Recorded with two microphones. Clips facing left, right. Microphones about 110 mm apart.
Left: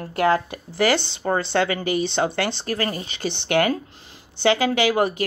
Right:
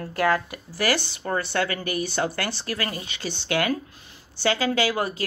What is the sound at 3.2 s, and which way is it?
A woman's voice, 20° left (ahead or behind).